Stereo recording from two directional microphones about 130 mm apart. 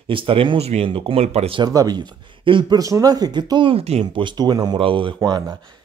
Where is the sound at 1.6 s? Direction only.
30° right (ahead or behind); by 4.0 s 50° right (ahead or behind).